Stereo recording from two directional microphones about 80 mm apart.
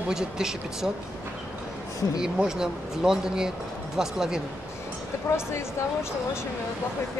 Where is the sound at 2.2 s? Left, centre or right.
Centre.